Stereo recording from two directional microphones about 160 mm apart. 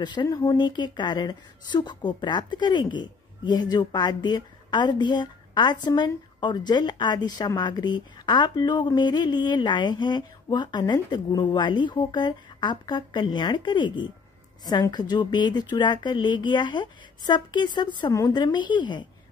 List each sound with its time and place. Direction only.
0.0 s speech: 30° left (ahead or behind)